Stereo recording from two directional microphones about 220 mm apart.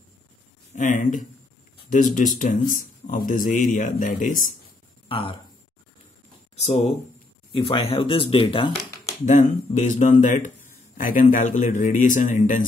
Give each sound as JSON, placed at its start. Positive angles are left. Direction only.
{"t": 0.7, "sound": "speech", "side_deg": 35}
{"t": 5.0, "sound": "speech", "side_deg": 25}
{"t": 6.5, "sound": "speech", "side_deg": 30}